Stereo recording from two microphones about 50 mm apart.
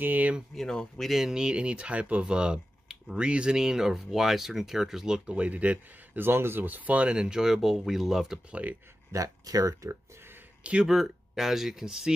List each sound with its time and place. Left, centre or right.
0.0 s speech: right
0.6 s speech: centre
1.1 s speech: centre; by 2.2 s right
2.2 s speech: centre
5.2 s speech: right
6.1 s speech: right
6.6 s speech: right; by 8.4 s centre
8.5 s speech: right
9.1 s speech: right
10.6 s speech: right
10.9 s speech: centre